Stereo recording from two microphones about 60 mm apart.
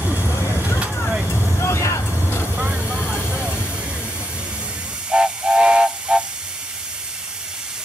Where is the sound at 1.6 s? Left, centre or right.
Left.